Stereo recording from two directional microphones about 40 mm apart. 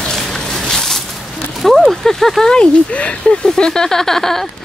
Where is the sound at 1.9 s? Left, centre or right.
Centre.